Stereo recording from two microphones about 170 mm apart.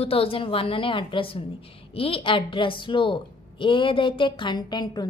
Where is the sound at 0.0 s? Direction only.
35° left (ahead or behind).